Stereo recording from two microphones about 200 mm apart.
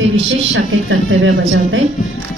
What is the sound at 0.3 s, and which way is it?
A woman's voice, 70° right (ahead or behind).